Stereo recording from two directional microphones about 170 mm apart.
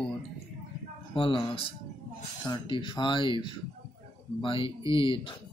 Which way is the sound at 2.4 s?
25° left (ahead or behind).